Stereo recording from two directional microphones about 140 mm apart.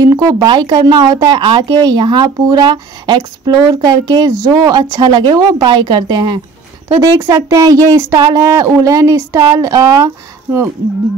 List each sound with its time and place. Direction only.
0.0 s a woman's voice: 25° right (ahead or behind)